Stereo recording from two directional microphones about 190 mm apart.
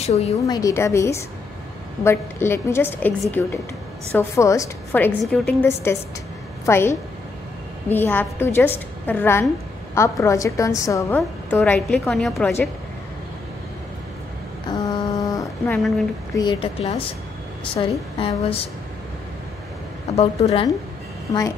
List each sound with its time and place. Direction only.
0.0 s a woman's voice: 35° left (ahead or behind)
0.5 s a woman's voice: 20° left (ahead or behind)
5.2 s a woman's voice: 5° left (ahead or behind)
14.7 s a sound: 20° left (ahead or behind)
16.3 s a woman's voice: 25° left (ahead or behind)
20.2 s a woman's voice: 35° left (ahead or behind)
21.3 s a woman's voice: 15° left (ahead or behind)